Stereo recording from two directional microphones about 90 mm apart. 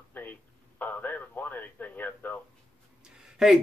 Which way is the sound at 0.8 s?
20° left (ahead or behind).